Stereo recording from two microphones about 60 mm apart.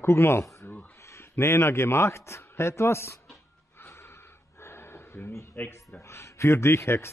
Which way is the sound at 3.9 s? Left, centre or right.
Left.